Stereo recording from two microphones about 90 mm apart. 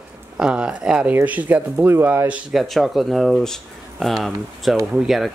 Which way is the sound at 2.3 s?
5° right (ahead or behind).